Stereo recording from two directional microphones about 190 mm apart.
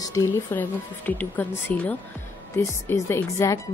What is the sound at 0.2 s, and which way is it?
A woman's voice, 15° left (ahead or behind).